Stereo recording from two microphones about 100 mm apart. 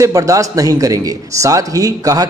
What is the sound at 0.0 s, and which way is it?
A man's voice, 35° right (ahead or behind).